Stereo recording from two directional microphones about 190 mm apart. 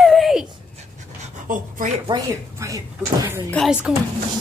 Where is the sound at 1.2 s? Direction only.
45° right (ahead or behind).